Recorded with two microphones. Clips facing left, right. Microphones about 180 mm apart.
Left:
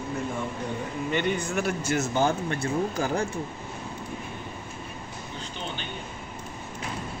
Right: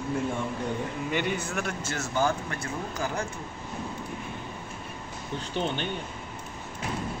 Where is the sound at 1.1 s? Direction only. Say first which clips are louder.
Left 4 dB; 5° right (ahead or behind).